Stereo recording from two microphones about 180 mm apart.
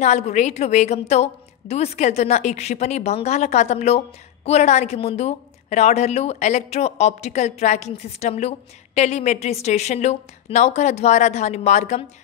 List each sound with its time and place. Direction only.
0.0 s a woman's voice: 40° left (ahead or behind)